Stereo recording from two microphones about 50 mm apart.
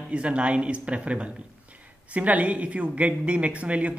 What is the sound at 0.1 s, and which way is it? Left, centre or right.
Speech, right.